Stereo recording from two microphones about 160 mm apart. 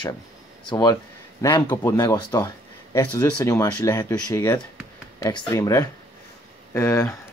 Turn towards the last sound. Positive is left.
turn(degrees=15)  # may be behind; listen again after turning